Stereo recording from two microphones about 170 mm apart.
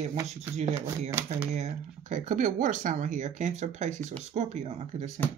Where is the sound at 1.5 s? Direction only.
45° right (ahead or behind).